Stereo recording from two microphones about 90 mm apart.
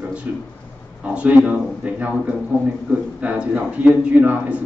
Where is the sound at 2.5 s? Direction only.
25° left (ahead or behind).